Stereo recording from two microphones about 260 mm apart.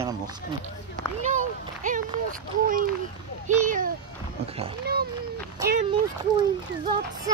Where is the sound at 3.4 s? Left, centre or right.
Right.